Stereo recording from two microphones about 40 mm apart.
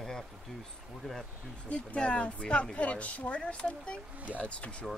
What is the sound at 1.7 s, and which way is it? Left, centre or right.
Speech, left.